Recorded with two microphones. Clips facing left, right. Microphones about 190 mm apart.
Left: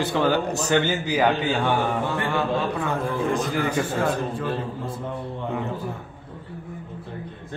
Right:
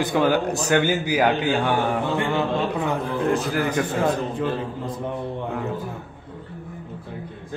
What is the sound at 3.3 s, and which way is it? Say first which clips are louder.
Speech: right 1 dB; 5° right (ahead or behind).